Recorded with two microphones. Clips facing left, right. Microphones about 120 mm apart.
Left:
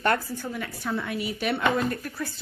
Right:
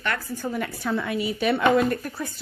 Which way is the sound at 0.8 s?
90° right.